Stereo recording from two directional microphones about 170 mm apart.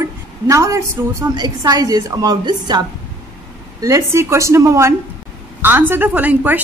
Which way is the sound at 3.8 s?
20° right (ahead or behind).